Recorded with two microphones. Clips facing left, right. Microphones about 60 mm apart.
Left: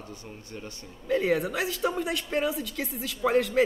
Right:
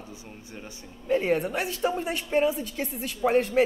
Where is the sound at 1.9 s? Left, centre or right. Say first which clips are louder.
Right 3 dB; left.